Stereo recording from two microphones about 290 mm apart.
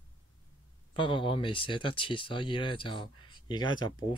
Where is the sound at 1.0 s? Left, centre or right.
Centre.